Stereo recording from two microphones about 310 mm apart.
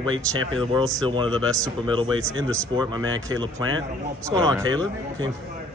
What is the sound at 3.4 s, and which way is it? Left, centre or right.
Speech, centre.